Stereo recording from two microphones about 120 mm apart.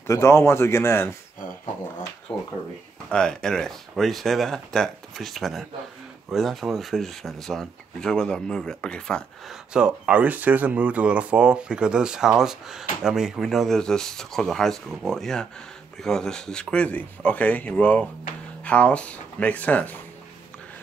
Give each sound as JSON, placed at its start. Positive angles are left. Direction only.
{"t": 0.0, "sound": "speech", "side_deg": 20}
{"t": 2.3, "sound": "speech", "side_deg": 10}
{"t": 9.7, "sound": "speech", "side_deg": -5}